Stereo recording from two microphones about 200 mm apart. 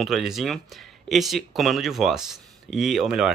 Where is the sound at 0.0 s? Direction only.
Centre (ahead or behind).